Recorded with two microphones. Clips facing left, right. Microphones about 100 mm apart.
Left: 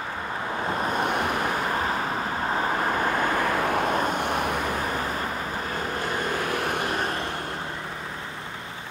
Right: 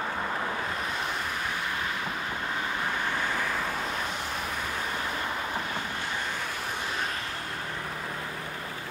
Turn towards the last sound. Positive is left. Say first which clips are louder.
# left 7 dB
turn(degrees=60)  # may be behind; listen again after turning